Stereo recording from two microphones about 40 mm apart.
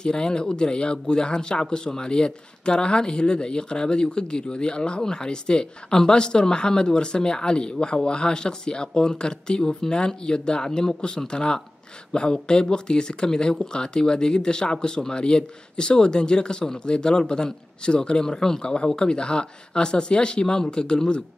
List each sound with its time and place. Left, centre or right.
0.0 s speech: centre